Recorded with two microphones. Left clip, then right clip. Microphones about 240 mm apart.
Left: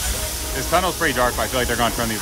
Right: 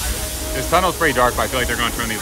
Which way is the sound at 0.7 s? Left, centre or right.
Centre.